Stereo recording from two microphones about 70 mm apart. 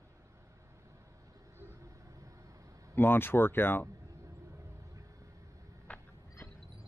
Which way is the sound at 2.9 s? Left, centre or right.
Left.